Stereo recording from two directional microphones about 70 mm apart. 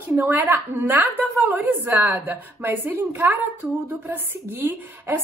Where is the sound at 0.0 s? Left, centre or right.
Right.